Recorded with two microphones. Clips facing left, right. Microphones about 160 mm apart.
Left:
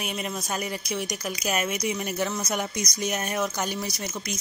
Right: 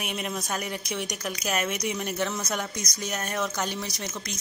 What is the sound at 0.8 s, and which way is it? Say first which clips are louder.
Speech: left 2 dB; 5° left (ahead or behind).